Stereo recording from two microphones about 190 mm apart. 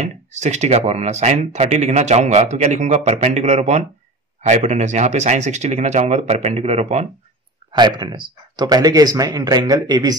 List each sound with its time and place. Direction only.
0.0 s speech: 35° right (ahead or behind)
7.7 s speech: 20° right (ahead or behind)